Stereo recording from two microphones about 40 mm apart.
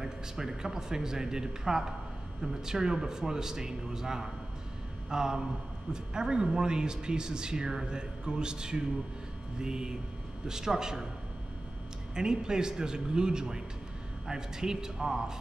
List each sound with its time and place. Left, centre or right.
0.0 s speech: centre
12.2 s speech: centre